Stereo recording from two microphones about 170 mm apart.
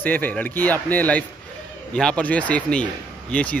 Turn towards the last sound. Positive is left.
turn(degrees=10)  # may be behind; listen again after turning